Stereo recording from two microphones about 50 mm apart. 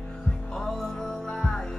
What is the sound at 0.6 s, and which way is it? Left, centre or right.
Music, centre.